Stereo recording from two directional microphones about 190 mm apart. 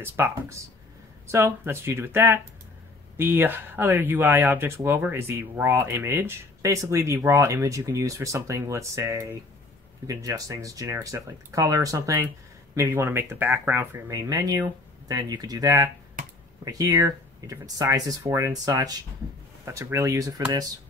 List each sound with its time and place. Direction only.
0.0 s speech: 15° right (ahead or behind)